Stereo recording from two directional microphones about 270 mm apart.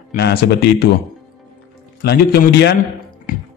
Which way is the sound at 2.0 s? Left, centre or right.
Left.